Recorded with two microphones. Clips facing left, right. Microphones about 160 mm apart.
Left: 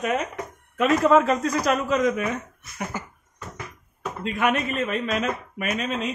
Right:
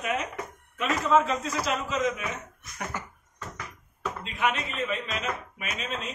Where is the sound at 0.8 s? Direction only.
55° left (ahead or behind).